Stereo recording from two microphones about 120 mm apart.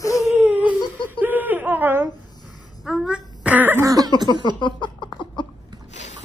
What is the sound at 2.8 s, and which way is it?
Throat clearing, 5° right (ahead or behind).